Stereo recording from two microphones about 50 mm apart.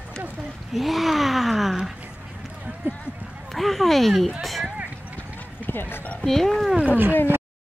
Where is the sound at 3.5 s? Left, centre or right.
Centre.